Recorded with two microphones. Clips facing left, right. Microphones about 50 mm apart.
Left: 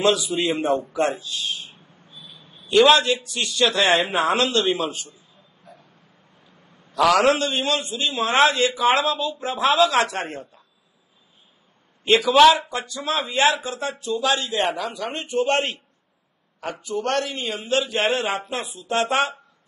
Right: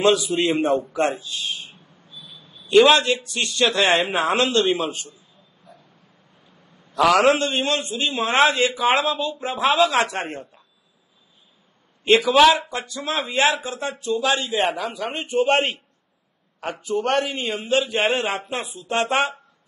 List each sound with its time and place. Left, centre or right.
0.0 s a man's voice: centre
2.0 s a sound: left
2.7 s a man's voice: centre
6.9 s a sound: centre
7.2 s a man's voice: centre
12.0 s a man's voice: centre; by 15.7 s right
16.5 s a man's voice: centre